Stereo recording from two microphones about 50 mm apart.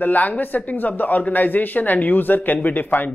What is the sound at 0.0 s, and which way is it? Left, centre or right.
Speech, left.